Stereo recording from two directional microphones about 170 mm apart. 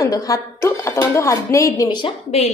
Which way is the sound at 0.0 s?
20° left (ahead or behind).